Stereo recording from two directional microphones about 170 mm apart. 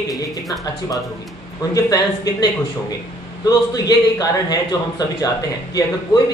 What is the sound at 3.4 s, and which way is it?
A man's voice, 20° left (ahead or behind).